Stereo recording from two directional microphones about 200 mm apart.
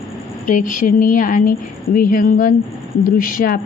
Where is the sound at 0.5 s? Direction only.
40° left (ahead or behind).